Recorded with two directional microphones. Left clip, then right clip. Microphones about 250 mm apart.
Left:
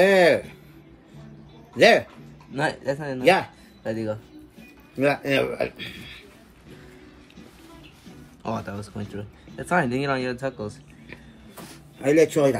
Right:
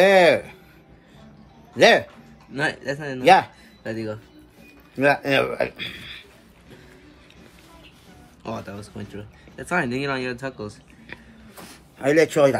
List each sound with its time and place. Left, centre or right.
0.0 s a sound: centre
1.8 s speech: centre
2.5 s speech: centre
5.2 s speech: centre
8.4 s speech: centre
12.0 s speech: centre